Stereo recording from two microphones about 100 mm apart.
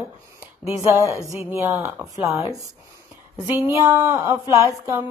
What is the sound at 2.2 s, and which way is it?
Speech, 35° right (ahead or behind).